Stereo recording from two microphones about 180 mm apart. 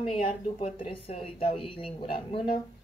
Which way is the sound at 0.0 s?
30° left (ahead or behind).